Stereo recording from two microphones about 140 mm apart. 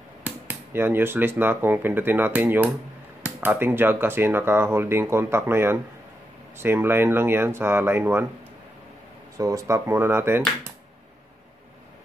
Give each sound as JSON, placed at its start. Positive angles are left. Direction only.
{"t": 0.2, "sound": "speech", "side_deg": -15}
{"t": 9.4, "sound": "speech", "side_deg": -20}